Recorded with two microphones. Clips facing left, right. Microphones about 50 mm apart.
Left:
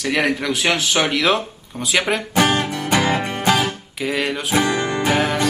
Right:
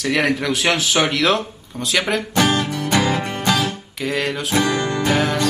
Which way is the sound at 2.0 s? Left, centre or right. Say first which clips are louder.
Left 1 dB; centre.